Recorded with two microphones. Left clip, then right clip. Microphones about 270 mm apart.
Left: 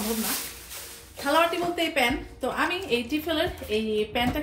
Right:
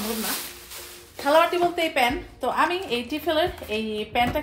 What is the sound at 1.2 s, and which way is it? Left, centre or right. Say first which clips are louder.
A woman's voice: right 4 dB; right.